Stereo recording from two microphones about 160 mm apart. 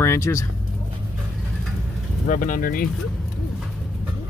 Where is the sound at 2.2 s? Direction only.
55° left (ahead or behind).